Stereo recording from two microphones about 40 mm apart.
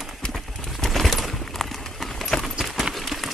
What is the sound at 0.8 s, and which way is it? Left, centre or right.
Clip-clop, centre.